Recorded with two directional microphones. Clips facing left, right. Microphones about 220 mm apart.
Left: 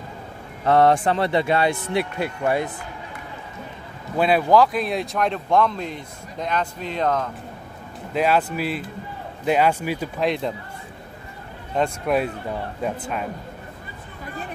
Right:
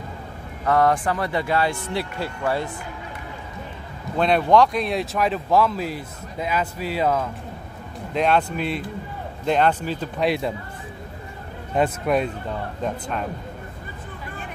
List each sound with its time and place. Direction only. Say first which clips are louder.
0.7 s speech: left 3 dB; 25° left (ahead or behind)
4.2 s speech: even; 5° left (ahead or behind)
8.1 s a man's voice: even; 5° left (ahead or behind)
10.2 s speech: right 1 dB; 5° right (ahead or behind)
11.7 s speech: right 1 dB; 5° right (ahead or behind)
12.2 s a man's voice: even; 5° left (ahead or behind)